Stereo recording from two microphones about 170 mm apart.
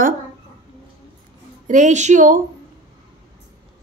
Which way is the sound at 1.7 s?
45° right (ahead or behind).